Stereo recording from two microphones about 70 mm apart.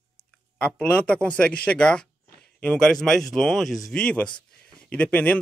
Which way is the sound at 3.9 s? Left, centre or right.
Centre.